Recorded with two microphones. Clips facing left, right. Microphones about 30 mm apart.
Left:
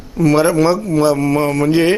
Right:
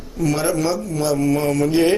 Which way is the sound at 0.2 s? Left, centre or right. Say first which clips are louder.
Left 7 dB; left.